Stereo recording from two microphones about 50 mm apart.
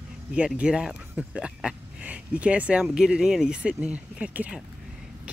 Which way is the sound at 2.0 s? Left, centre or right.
Right.